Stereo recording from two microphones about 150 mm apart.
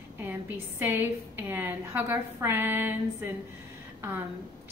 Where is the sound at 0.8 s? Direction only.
15° right (ahead or behind).